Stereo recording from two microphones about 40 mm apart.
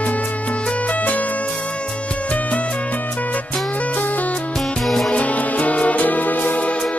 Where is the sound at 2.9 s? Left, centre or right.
Left.